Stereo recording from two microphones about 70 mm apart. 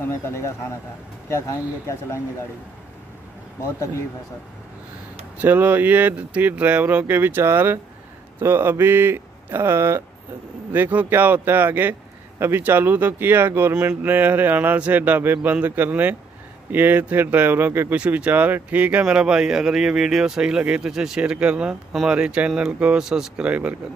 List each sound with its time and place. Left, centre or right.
0.0 s speech: left
5.4 s speech: right
10.7 s speech: right
13.7 s speech: right